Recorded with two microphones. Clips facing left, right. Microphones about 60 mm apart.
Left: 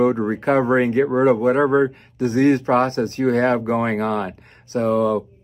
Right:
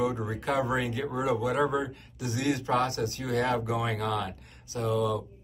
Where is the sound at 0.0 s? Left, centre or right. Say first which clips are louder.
Left 11 dB; left.